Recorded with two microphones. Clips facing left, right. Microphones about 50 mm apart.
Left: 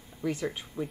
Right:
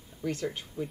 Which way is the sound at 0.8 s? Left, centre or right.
Left.